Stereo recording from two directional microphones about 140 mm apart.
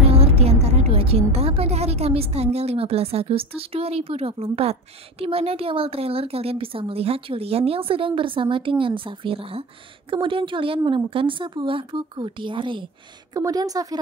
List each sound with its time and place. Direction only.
0.1 s a woman's voice: 45° right (ahead or behind); by 13.9 s 25° right (ahead or behind)